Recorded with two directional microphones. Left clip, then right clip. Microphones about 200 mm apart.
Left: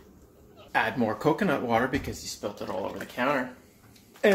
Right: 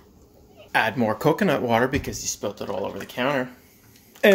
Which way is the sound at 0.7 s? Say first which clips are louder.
Right 4 dB; 40° right (ahead or behind).